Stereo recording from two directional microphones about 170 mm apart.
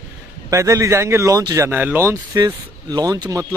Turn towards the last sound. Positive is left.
turn(degrees=-20)  # may be behind; listen again after turning